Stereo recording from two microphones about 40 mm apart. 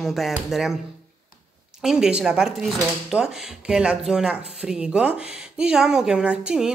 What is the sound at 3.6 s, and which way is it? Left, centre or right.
Speech, right.